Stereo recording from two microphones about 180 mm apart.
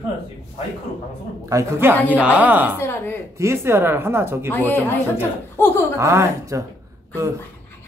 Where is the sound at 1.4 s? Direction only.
15° right (ahead or behind).